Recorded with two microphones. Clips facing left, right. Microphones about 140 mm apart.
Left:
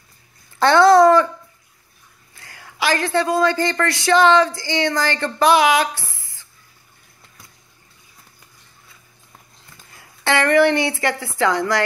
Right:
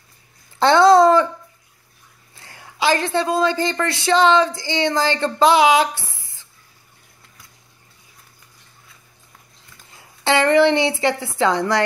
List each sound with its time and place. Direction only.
0.6 s a sound: 20° right (ahead or behind)
2.3 s a woman's voice: 25° right (ahead or behind)
10.2 s speech: 20° right (ahead or behind)